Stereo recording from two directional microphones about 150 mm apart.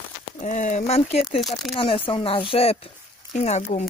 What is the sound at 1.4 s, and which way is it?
Speech, centre (ahead or behind).